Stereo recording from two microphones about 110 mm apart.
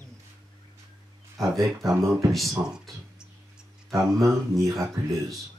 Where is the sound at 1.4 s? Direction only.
Centre (ahead or behind).